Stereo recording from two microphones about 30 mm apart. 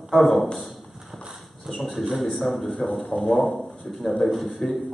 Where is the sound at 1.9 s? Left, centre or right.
Centre.